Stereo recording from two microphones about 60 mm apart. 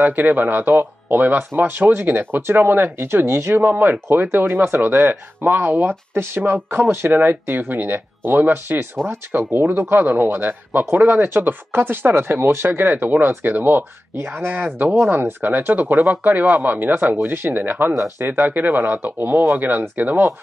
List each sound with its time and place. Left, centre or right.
0.3 s speech: right
9.1 s speech: right
15.0 s speech: right
15.4 s speech: right